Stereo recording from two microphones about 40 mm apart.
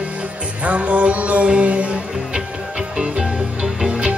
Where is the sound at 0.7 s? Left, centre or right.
Right.